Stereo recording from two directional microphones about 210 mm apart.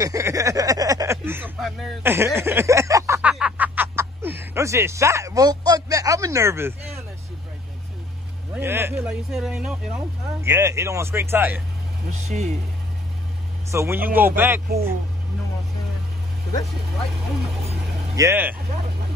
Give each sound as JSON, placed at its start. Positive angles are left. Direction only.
{"t": 0.0, "sound": "a sound", "side_deg": -15}
{"t": 8.5, "sound": "speech", "side_deg": -10}
{"t": 12.1, "sound": "speech", "side_deg": -35}
{"t": 13.7, "sound": "speech", "side_deg": -10}
{"t": 18.1, "sound": "speech", "side_deg": -10}